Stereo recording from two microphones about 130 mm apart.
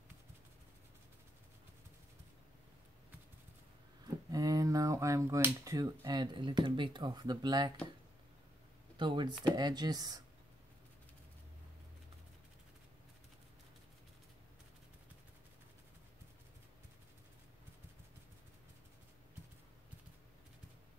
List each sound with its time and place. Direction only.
4.3 s speech: 25° right (ahead or behind)
8.9 s speech: 35° right (ahead or behind)